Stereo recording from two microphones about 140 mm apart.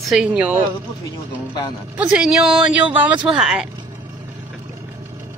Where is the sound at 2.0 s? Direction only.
10° right (ahead or behind).